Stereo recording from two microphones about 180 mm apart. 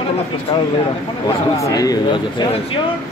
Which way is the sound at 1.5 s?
20° left (ahead or behind).